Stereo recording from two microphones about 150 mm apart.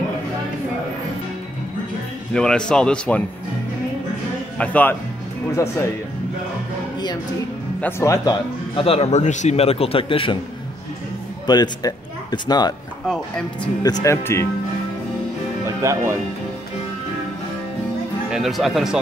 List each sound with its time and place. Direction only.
2.3 s speech: 5° left (ahead or behind)
4.6 s speech: 10° left (ahead or behind)
7.8 s speech: 20° left (ahead or behind)
8.7 s a man's voice: 40° left (ahead or behind)
11.4 s speech: 30° left (ahead or behind)
13.0 s speech: centre (ahead or behind)
14.0 s speech: 20° left (ahead or behind)
15.6 s speech: 20° right (ahead or behind)
18.3 s speech: centre (ahead or behind)